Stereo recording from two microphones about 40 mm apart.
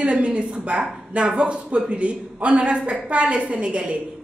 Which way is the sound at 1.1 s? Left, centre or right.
Right.